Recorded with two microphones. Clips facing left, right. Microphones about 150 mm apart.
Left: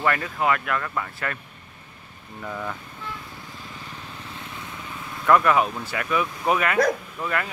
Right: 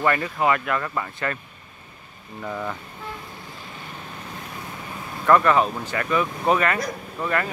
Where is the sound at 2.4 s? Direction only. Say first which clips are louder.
Right 2 dB; 10° right (ahead or behind).